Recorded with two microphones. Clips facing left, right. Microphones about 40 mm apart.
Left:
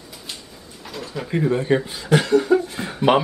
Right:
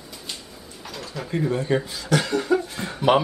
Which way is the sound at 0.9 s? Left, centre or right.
Centre.